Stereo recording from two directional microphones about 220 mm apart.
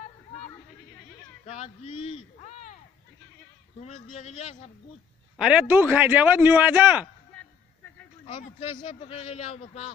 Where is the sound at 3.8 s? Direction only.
30° left (ahead or behind).